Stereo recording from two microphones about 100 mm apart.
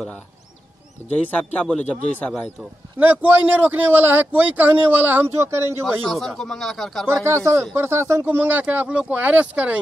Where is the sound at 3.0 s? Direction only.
20° right (ahead or behind).